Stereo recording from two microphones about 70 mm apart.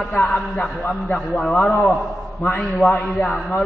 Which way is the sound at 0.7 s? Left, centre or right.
Left.